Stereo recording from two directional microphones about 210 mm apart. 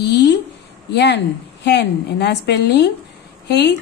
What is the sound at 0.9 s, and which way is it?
A woman's voice, 55° left (ahead or behind).